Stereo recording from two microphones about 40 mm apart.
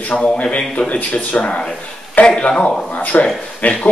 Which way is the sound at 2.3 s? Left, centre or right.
Centre.